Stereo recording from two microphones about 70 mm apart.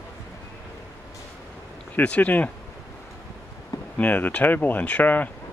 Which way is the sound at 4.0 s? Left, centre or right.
Left.